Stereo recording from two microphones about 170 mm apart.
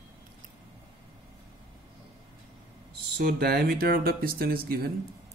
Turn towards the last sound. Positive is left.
turn(degrees=-60)  # may be behind; listen again after turning